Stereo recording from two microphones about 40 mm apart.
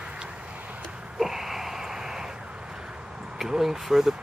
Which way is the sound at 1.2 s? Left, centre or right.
Centre.